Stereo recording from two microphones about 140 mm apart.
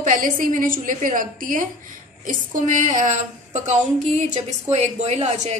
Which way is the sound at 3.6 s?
55° right (ahead or behind).